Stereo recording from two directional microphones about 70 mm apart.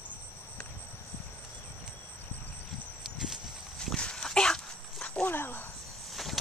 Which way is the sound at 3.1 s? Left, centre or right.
Centre.